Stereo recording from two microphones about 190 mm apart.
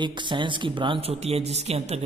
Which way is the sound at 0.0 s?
25° right (ahead or behind).